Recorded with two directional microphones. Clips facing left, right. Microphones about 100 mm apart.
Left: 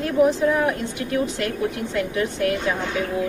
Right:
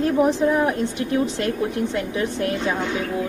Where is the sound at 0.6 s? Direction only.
25° right (ahead or behind).